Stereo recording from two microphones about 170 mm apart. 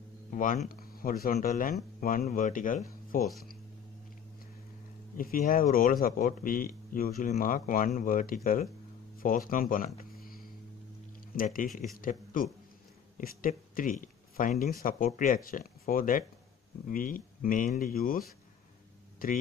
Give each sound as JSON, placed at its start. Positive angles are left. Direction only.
{"t": 0.3, "sound": "speech", "side_deg": 50}
{"t": 5.1, "sound": "speech", "side_deg": 55}